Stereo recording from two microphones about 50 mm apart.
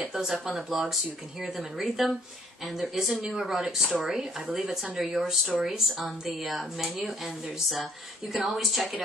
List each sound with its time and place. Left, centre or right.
0.1 s a woman's voice: centre
8.3 s a woman's voice: centre